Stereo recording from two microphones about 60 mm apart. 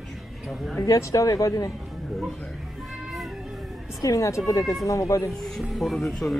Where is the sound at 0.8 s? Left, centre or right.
Left.